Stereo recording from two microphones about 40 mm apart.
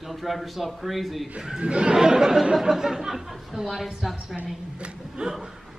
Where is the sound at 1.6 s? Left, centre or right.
Right.